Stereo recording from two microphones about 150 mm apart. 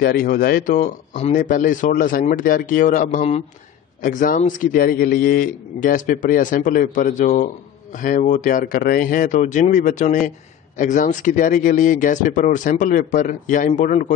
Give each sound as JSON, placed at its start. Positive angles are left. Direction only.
{"t": 0.0, "sound": "a man's voice", "side_deg": 80}
{"t": 1.3, "sound": "a man's voice", "side_deg": 65}
{"t": 4.0, "sound": "a man's voice", "side_deg": 65}